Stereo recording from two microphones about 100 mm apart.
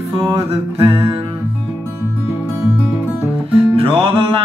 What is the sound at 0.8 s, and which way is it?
Music, 65° right (ahead or behind).